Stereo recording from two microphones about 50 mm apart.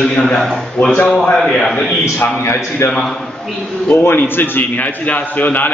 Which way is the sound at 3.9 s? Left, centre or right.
Left.